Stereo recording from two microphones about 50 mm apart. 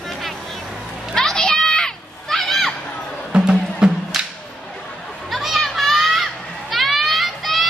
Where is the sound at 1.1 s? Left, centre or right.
Centre.